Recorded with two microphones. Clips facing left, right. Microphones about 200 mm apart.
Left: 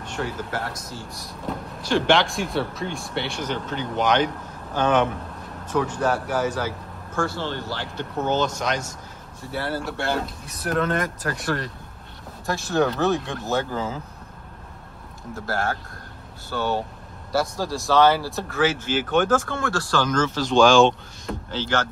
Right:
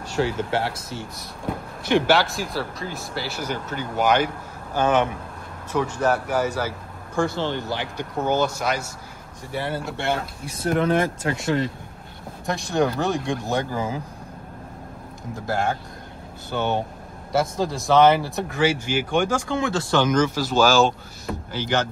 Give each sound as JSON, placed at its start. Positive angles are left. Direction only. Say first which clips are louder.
{"t": 0.1, "sound": "a man's voice", "louder": "right 6 dB", "side_deg": -30}
{"t": 2.0, "sound": "speech", "louder": "even", "side_deg": -5}
{"t": 9.8, "sound": "speech", "louder": "right 1 dB", "side_deg": 0}
{"t": 10.4, "sound": "speech", "louder": "right 6 dB", "side_deg": -25}
{"t": 15.3, "sound": "speech", "louder": "right 2 dB", "side_deg": -15}